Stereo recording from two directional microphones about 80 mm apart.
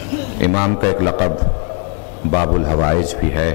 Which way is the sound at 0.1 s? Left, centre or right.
Centre.